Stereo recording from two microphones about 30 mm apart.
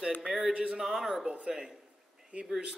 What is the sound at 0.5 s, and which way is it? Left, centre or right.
Speech, right.